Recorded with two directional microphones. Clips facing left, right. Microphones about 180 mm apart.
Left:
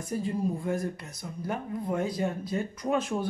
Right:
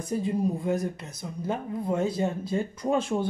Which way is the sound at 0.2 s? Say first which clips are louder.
Right 2 dB; 20° right (ahead or behind).